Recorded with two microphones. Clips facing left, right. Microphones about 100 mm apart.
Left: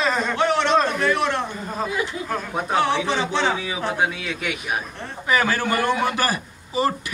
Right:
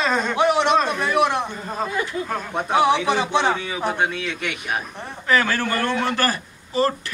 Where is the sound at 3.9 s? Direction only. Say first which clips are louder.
Even; 5° left (ahead or behind).